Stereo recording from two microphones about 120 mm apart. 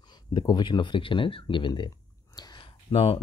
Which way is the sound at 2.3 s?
35° left (ahead or behind).